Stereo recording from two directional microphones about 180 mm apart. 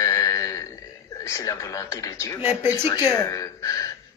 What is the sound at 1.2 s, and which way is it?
Speech, 15° left (ahead or behind).